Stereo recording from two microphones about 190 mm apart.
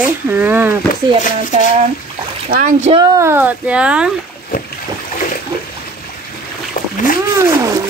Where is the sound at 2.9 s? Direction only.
20° right (ahead or behind).